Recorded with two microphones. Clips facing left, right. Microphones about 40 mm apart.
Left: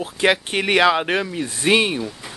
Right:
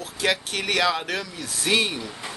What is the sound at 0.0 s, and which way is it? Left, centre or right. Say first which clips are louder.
Speech: left 6 dB; left.